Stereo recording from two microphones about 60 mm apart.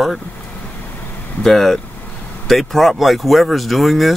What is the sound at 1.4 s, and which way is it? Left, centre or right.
Speech, centre.